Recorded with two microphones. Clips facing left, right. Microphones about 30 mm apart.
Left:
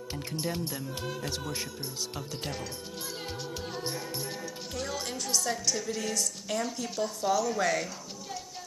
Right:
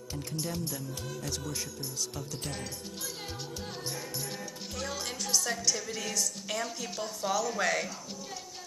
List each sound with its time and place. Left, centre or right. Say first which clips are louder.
0.1 s speech: left 2 dB; left
3.8 s speech: left 2 dB; left
4.7 s a woman's voice: left 1 dB; centre